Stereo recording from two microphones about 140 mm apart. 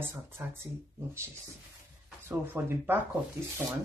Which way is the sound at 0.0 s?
15° right (ahead or behind).